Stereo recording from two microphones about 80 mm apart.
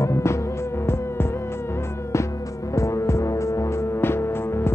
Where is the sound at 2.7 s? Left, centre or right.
Left.